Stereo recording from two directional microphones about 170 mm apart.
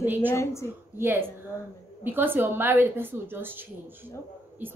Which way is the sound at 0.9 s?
15° right (ahead or behind).